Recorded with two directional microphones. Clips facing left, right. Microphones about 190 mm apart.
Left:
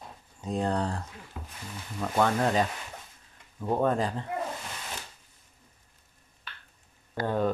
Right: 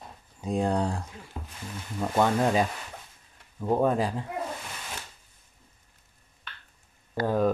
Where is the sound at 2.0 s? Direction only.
15° right (ahead or behind).